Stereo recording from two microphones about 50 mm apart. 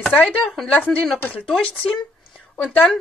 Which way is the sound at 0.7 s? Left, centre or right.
Left.